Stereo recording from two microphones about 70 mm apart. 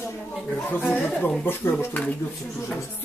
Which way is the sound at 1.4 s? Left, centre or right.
Left.